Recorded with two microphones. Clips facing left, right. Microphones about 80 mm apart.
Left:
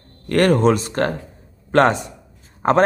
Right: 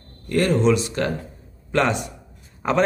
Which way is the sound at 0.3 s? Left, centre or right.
Left.